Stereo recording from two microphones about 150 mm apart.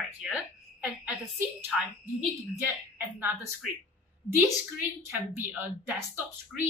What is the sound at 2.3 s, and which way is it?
A woman's voice, 15° right (ahead or behind).